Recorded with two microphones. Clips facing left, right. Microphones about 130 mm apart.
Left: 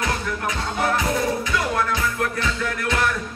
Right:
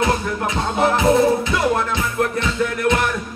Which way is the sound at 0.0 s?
25° right (ahead or behind).